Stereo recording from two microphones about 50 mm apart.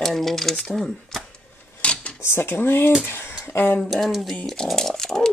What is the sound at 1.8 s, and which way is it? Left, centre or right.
Dishes, left.